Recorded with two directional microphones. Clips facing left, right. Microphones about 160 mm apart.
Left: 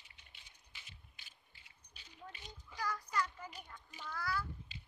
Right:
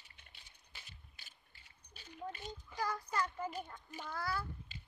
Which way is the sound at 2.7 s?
25° right (ahead or behind).